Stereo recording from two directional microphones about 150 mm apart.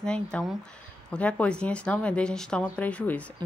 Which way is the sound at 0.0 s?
5° left (ahead or behind).